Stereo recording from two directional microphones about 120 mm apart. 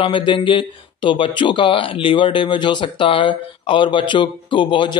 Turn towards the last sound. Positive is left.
turn(degrees=45)  # may be behind; listen again after turning